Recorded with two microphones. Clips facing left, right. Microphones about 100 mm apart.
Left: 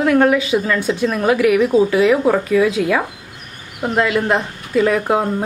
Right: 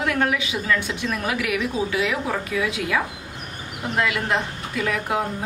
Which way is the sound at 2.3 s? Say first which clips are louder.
Left 10 dB; 50° left (ahead or behind).